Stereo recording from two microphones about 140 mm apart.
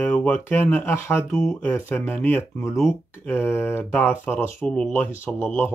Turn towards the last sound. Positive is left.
turn(degrees=15)  # may be behind; listen again after turning